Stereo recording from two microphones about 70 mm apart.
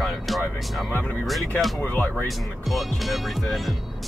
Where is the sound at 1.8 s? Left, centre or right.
Left.